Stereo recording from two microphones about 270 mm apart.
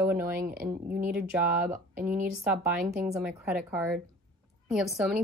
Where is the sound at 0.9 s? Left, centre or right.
Centre.